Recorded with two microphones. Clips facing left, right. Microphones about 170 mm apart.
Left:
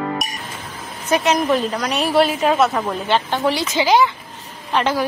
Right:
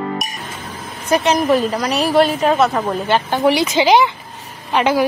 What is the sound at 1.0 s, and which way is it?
A woman's voice, centre (ahead or behind).